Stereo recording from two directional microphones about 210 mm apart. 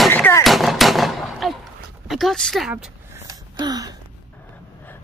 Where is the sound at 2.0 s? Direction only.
Centre (ahead or behind).